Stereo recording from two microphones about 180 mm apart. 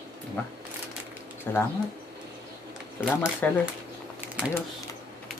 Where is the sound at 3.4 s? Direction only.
10° left (ahead or behind).